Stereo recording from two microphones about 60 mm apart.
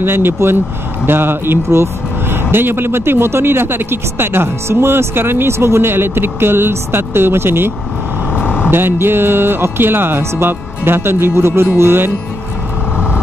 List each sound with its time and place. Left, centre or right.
0.0 s speech: right
8.3 s vehicle: centre
8.6 s speech: right